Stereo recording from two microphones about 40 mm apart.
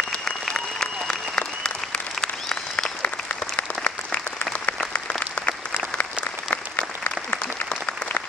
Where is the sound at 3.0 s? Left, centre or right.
Left.